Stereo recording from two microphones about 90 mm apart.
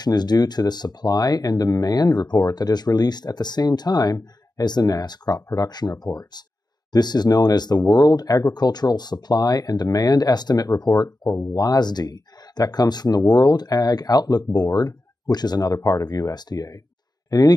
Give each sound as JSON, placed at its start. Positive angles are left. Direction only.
{"t": 0.0, "sound": "speech", "side_deg": 50}